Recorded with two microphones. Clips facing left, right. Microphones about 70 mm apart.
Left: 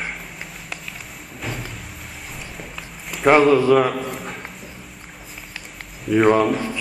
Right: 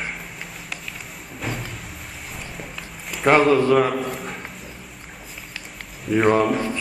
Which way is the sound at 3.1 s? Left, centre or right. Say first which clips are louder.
Left 2 dB; centre.